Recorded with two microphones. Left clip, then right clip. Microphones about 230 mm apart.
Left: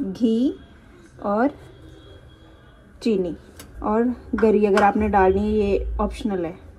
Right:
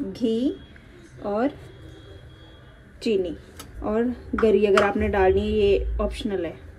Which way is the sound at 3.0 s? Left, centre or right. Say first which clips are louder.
Left 1 dB; left.